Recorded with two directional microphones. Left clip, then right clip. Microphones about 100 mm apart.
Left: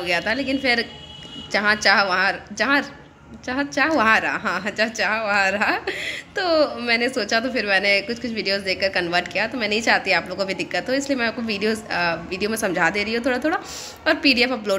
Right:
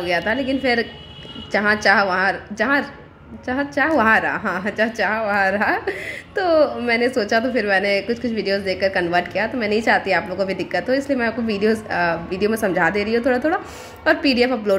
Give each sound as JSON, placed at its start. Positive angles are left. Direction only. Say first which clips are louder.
{"t": 0.3, "sound": "a woman's voice", "louder": "right 1 dB", "side_deg": -35}